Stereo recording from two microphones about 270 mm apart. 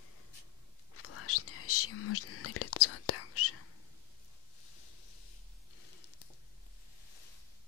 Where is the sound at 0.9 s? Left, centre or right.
Left.